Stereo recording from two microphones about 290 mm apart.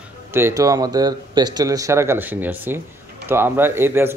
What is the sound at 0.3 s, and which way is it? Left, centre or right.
A man's voice, centre.